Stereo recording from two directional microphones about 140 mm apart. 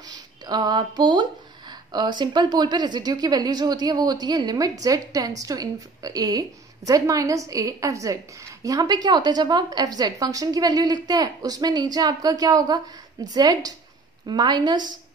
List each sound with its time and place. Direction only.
0.1 s a woman's voice: 30° right (ahead or behind)